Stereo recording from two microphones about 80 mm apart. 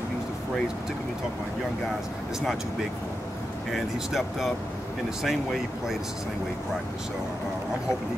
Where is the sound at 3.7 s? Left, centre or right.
Centre.